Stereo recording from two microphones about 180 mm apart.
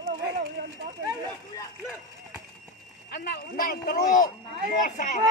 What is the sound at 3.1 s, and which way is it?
Speech, 55° left (ahead or behind).